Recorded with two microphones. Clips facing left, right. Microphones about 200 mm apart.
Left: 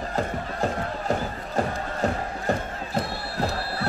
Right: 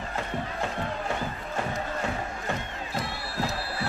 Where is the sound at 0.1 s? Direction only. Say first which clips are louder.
Left 3 dB; 40° left (ahead or behind).